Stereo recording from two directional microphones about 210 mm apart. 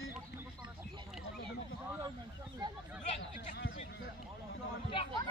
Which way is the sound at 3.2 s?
60° left (ahead or behind).